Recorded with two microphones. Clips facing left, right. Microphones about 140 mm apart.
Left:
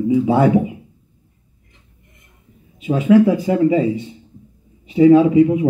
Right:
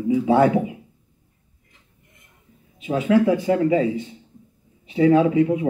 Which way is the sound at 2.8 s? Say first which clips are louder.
Left 5 dB; 10° left (ahead or behind).